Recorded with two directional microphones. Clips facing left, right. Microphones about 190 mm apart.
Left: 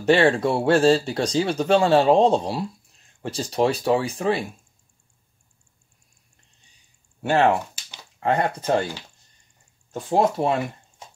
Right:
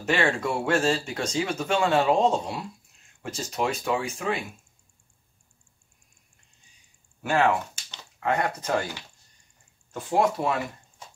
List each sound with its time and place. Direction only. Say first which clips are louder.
0.0 s speech: left 7 dB; 35° left (ahead or behind)
7.2 s speech: left 4 dB; 30° left (ahead or behind)
9.9 s speech: left 3 dB; 35° left (ahead or behind)